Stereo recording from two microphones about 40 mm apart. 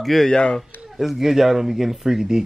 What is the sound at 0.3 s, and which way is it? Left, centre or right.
Speech, left.